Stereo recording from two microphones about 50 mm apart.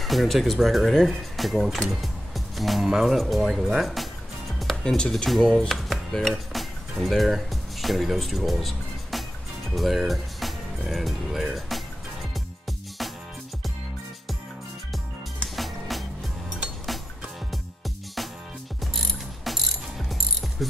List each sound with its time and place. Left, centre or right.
0.0 s speech: centre
4.8 s speech: centre
5.1 s speech: centre
15.5 s music: centre
17.5 s music: centre
18.9 s pulleys: centre